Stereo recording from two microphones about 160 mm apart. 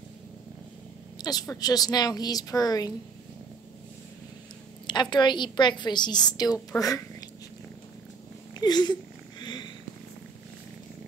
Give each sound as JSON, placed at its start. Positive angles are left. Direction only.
{"t": 1.1, "sound": "a woman's voice", "side_deg": 25}
{"t": 5.1, "sound": "a woman's voice", "side_deg": 30}
{"t": 8.5, "sound": "speech", "side_deg": 25}
{"t": 9.4, "sound": "purr", "side_deg": 25}